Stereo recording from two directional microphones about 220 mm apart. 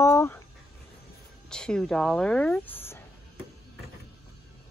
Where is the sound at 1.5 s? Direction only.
5° left (ahead or behind).